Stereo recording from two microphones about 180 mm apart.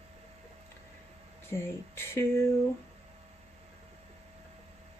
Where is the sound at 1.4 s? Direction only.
15° left (ahead or behind).